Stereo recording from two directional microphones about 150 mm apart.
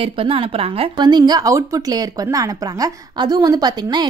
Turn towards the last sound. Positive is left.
turn(degrees=-30)  # may be behind; listen again after turning